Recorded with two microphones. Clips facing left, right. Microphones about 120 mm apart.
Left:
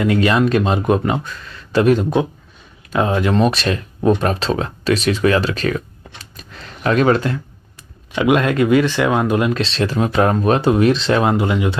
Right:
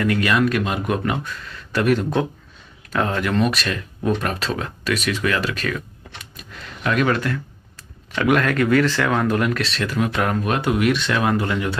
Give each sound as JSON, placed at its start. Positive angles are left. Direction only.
{"t": 0.0, "sound": "speech", "side_deg": 25}
{"t": 6.3, "sound": "a sound", "side_deg": 35}
{"t": 8.1, "sound": "speech", "side_deg": 20}